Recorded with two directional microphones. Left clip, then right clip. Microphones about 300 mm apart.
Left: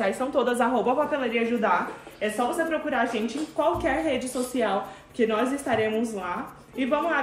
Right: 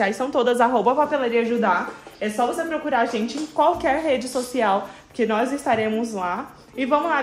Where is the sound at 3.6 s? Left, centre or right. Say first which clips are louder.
Right 5 dB; right.